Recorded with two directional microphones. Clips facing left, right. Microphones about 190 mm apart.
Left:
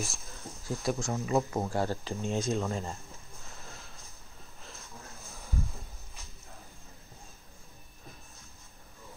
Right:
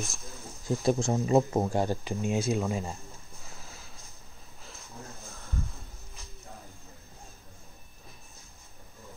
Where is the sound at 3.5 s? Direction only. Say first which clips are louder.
Left 1 dB; centre (ahead or behind).